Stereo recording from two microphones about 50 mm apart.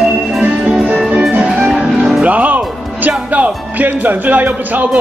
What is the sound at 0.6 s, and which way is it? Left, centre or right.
Music, right.